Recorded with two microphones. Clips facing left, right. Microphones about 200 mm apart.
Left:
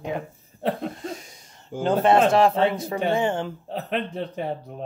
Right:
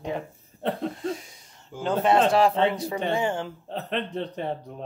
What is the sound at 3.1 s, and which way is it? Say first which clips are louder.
Speech: left 2 dB; 25° left (ahead or behind).